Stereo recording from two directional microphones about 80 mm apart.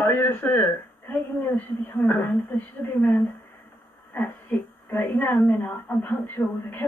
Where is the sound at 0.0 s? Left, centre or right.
Left.